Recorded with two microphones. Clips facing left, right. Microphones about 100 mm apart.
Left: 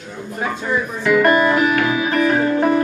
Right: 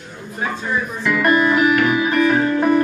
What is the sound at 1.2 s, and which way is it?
Music, 25° left (ahead or behind).